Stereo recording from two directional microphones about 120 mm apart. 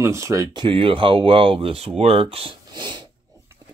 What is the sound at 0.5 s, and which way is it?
Speech, 45° right (ahead or behind).